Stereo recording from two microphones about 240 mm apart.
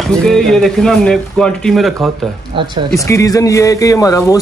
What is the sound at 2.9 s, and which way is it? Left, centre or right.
Speech, centre.